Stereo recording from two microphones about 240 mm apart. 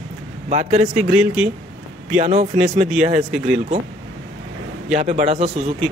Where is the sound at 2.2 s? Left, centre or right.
Right.